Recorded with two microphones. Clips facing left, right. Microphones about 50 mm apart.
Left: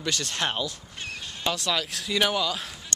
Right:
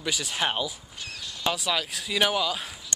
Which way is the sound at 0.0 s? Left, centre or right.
Centre.